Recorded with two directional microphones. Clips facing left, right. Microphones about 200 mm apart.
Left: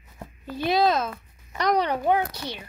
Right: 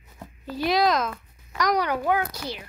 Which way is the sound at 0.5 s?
20° left (ahead or behind).